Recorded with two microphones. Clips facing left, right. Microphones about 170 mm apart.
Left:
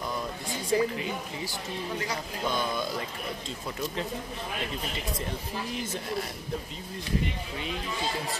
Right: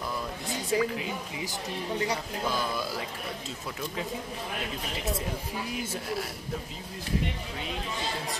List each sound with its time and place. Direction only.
0.7 s speech: 5° right (ahead or behind)
2.4 s speech: 5° right (ahead or behind)